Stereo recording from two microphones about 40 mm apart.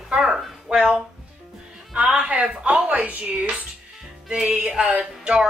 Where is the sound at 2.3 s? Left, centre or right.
Right.